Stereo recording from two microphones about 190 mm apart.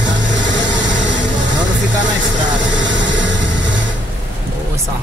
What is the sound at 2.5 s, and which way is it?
Vehicle, 70° right (ahead or behind).